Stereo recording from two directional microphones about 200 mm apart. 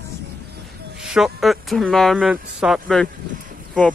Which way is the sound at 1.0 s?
Centre (ahead or behind).